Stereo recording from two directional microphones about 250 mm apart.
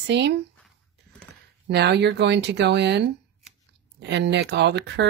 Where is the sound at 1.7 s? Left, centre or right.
Right.